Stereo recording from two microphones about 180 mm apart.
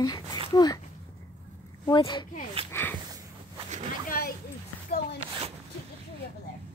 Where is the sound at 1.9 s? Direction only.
25° left (ahead or behind).